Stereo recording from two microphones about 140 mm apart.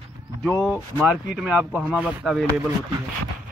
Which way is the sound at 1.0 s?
5° right (ahead or behind).